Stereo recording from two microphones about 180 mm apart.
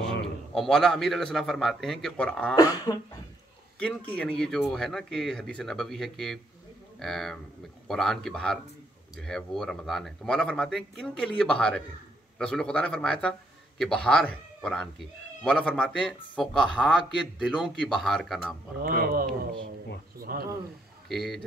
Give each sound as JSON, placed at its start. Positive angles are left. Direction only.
{"t": 0.0, "sound": "a man's voice", "side_deg": 5}
{"t": 2.5, "sound": "speech", "side_deg": 20}
{"t": 4.1, "sound": "speech", "side_deg": 5}
{"t": 18.8, "sound": "speech", "side_deg": -55}
{"t": 21.1, "sound": "speech", "side_deg": 0}